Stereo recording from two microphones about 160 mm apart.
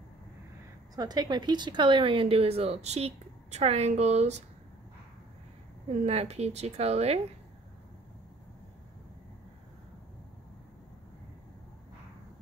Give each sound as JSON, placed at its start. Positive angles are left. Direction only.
{"t": 0.9, "sound": "speech", "side_deg": -25}
{"t": 5.9, "sound": "speech", "side_deg": -40}